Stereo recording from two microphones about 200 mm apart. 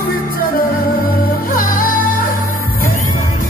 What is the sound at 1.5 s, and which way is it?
Music, 45° left (ahead or behind).